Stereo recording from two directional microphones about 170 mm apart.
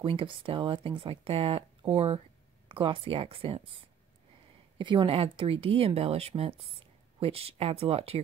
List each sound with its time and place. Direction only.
0.0 s speech: 30° right (ahead or behind)
4.7 s speech: 30° right (ahead or behind)